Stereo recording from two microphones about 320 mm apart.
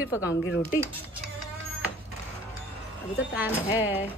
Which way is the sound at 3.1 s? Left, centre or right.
Centre.